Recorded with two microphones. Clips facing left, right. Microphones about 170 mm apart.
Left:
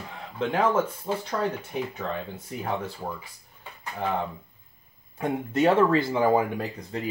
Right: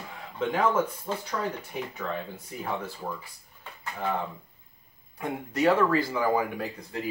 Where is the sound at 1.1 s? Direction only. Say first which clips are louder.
Left 3 dB; 20° left (ahead or behind).